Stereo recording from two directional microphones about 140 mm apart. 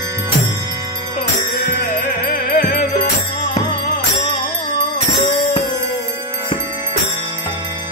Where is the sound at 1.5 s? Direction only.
90° left.